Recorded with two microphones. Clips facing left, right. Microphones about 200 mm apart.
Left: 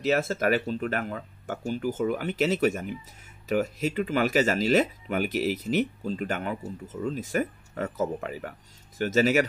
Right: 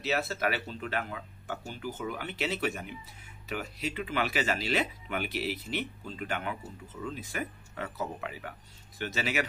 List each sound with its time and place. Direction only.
0.0 s speech: 45° left (ahead or behind)